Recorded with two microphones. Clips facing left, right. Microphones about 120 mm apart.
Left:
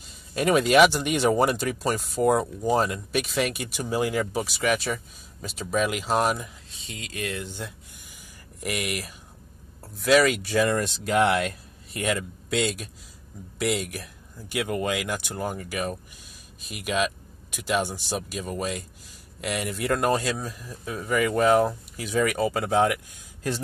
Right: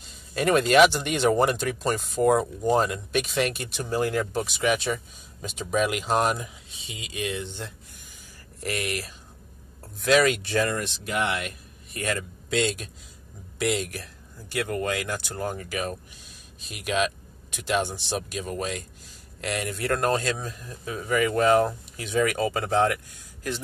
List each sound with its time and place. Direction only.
0.0 s speech: 5° left (ahead or behind)
10.7 s speech: 30° left (ahead or behind)
11.9 s a man's voice: 20° left (ahead or behind)
12.2 s speech: 5° left (ahead or behind)